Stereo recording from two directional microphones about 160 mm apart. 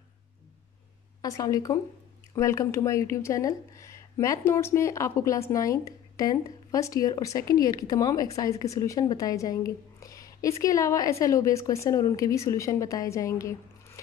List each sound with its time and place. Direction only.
1.2 s speech: 20° left (ahead or behind)